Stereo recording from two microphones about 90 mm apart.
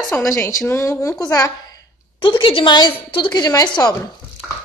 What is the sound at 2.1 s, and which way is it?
A woman's voice, 65° left (ahead or behind).